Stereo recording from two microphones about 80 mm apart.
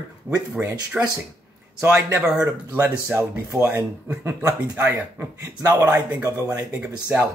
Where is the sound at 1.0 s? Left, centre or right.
Centre.